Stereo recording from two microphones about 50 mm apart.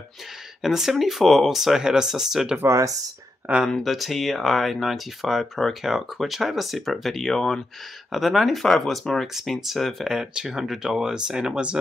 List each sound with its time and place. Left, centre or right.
0.6 s speech: centre
3.5 s speech: right
3.8 s speech: centre
10.0 s speech: centre